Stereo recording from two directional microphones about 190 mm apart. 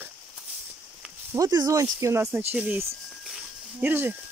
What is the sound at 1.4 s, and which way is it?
Speech, 20° right (ahead or behind).